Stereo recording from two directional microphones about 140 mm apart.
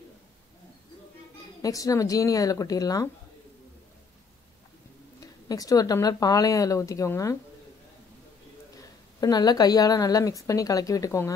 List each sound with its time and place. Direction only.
1.6 s speech: 25° left (ahead or behind)
5.2 s speech: 25° left (ahead or behind)
9.2 s speech: 30° left (ahead or behind)